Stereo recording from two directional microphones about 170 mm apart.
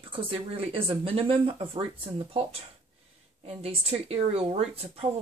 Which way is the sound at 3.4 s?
35° right (ahead or behind).